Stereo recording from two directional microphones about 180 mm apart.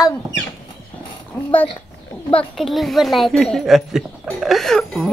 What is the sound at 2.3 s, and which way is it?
A woman's voice, 5° left (ahead or behind).